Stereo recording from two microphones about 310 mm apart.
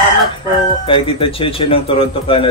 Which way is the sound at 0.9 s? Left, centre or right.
Centre.